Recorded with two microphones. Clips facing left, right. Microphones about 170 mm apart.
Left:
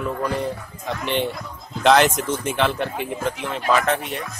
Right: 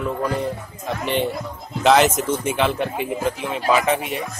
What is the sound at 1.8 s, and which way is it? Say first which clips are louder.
Speech: right 1 dB; 5° right (ahead or behind).